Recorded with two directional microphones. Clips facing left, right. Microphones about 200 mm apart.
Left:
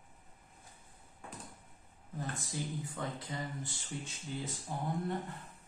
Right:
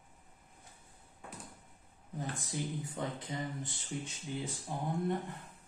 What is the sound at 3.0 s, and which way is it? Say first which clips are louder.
Speech: right 2 dB; 20° right (ahead or behind).